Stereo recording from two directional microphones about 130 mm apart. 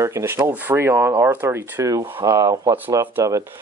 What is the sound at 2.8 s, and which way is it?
Speech, 20° right (ahead or behind).